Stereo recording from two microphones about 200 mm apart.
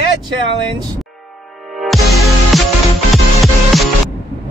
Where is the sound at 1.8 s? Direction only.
Centre (ahead or behind).